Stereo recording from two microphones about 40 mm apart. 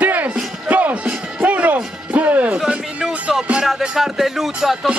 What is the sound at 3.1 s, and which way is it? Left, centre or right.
Music, right.